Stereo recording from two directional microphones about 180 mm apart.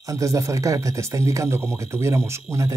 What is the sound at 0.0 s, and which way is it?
Speech, 15° right (ahead or behind).